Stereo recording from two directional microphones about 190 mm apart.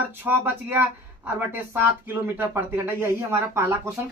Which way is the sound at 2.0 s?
10° right (ahead or behind).